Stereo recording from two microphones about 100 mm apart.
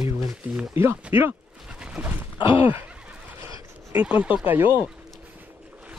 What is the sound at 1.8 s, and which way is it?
Dog, 10° right (ahead or behind).